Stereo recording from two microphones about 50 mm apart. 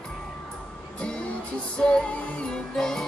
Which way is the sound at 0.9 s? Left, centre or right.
Left.